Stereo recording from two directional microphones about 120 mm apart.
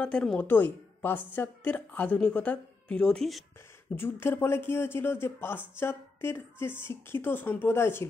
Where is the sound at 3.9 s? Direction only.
20° left (ahead or behind).